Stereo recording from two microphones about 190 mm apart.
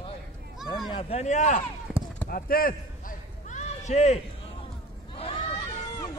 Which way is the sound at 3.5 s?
40° left (ahead or behind).